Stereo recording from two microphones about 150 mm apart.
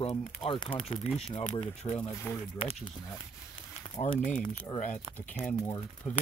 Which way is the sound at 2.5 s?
40° left (ahead or behind).